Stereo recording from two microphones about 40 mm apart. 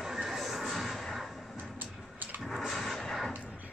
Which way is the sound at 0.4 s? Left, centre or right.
Centre.